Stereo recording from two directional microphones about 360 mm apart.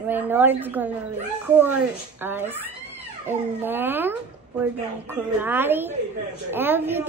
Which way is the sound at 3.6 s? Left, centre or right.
Centre.